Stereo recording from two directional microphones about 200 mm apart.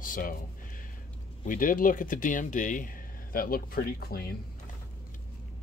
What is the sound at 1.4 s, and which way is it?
Speech, 40° left (ahead or behind).